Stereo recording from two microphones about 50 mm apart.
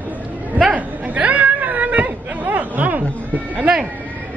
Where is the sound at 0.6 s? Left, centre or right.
Right.